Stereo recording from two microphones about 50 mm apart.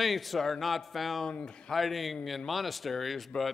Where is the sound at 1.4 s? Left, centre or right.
Centre.